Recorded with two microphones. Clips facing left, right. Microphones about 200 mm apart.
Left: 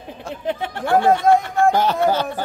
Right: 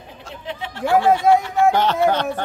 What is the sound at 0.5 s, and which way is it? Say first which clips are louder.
Speech: left 6 dB; 55° left (ahead or behind).